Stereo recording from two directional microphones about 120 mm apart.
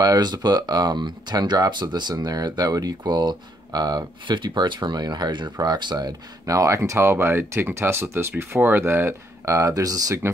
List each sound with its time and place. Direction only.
0.0 s speech: 35° right (ahead or behind)